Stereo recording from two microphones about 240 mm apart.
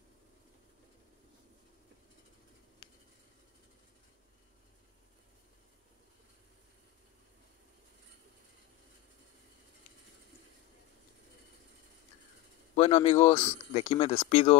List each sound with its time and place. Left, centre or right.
12.7 s speech: left